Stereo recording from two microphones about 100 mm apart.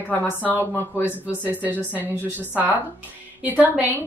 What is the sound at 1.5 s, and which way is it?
A woman's voice, 15° right (ahead or behind).